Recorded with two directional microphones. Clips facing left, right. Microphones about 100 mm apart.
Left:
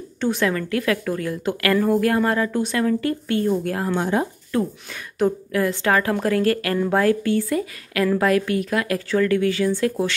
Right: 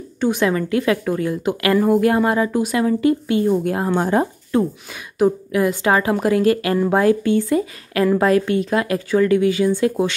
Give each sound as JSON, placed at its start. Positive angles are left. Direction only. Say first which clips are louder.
{"t": 0.2, "sound": "a woman's voice", "louder": "right 3 dB", "side_deg": -15}
{"t": 3.9, "sound": "speech", "louder": "right 4 dB", "side_deg": -40}
{"t": 4.5, "sound": "a woman's voice", "louder": "right 4 dB", "side_deg": -25}